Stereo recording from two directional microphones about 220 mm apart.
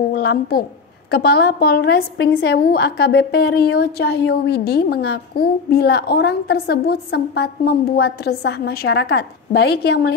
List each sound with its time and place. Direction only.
0.1 s a woman's voice: 45° left (ahead or behind)